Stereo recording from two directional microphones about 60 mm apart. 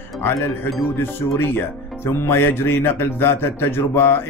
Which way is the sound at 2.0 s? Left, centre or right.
Left.